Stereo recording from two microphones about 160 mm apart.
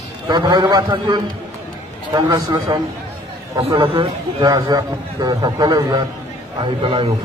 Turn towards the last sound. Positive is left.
turn(degrees=-30)  # may be behind; listen again after turning